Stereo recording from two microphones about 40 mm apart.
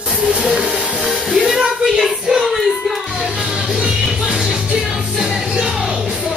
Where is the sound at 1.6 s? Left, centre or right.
Centre.